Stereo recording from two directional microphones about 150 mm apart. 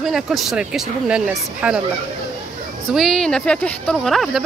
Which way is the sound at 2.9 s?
Centre (ahead or behind).